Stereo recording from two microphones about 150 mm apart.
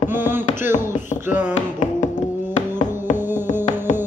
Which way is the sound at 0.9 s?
55° left (ahead or behind).